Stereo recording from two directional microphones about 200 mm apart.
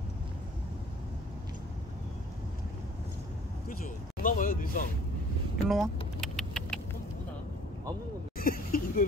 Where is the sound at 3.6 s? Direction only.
40° left (ahead or behind).